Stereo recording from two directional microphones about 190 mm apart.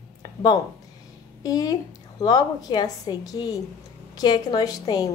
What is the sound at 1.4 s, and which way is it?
A woman's voice, 20° left (ahead or behind).